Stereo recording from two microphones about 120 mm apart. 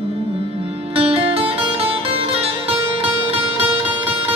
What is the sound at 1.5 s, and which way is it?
Music, 50° right (ahead or behind).